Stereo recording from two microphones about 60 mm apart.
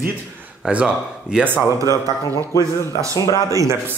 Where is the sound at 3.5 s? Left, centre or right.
Right.